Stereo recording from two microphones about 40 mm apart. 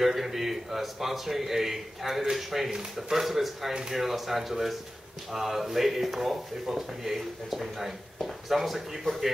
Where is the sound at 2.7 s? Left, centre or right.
Centre.